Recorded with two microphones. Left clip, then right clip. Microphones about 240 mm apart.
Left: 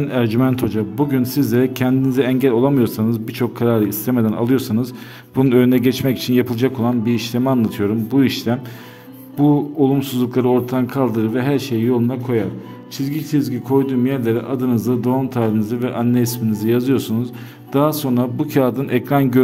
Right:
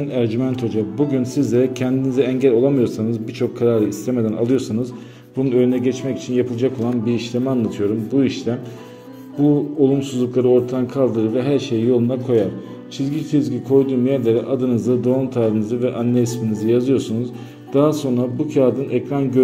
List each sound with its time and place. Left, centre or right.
0.1 s a man's voice: left
5.5 s speech: left
6.5 s a man's voice: left
9.8 s a man's voice: left